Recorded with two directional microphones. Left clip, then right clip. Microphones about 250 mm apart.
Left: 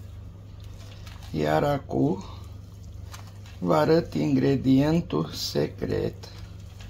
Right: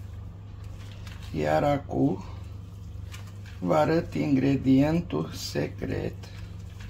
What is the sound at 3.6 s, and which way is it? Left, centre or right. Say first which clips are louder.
Speech: left 2 dB; left.